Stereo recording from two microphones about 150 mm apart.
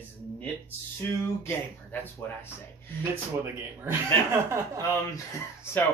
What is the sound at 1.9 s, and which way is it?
Speech, 15° left (ahead or behind).